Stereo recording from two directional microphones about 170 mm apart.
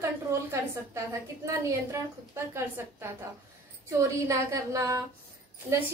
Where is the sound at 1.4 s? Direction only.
15° right (ahead or behind).